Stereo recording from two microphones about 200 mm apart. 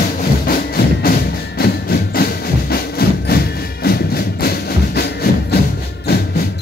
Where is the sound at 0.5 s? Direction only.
50° left (ahead or behind).